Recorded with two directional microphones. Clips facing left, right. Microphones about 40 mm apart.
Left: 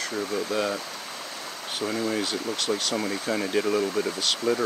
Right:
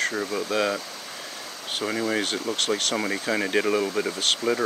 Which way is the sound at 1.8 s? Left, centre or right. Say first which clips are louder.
Right 2 dB; right.